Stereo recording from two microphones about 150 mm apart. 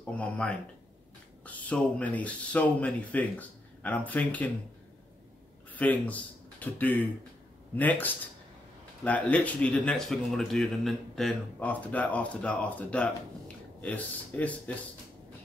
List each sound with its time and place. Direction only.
0.0 s speech: 10° left (ahead or behind)
5.8 s speech: 10° left (ahead or behind)